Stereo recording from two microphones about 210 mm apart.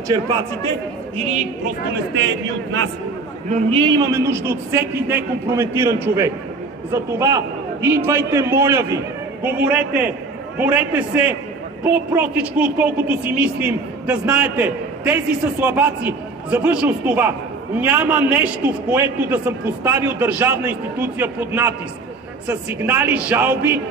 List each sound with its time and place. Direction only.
0.1 s a man's voice: 20° right (ahead or behind)
1.1 s a woman's voice: 30° right (ahead or behind)
2.1 s a man's voice: 60° right (ahead or behind)
3.4 s a woman's voice: 30° right (ahead or behind)
3.8 s a man's voice: 15° right (ahead or behind)